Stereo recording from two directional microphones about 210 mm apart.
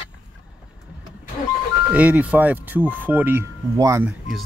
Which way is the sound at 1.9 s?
5° right (ahead or behind).